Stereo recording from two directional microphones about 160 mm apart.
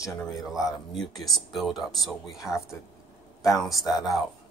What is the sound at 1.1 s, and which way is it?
Speech, centre (ahead or behind).